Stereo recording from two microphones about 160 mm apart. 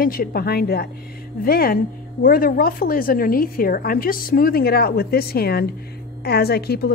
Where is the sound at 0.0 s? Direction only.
65° left (ahead or behind).